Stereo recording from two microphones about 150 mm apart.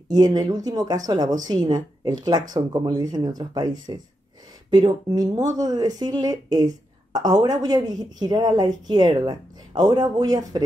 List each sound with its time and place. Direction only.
0.1 s speech: 25° right (ahead or behind)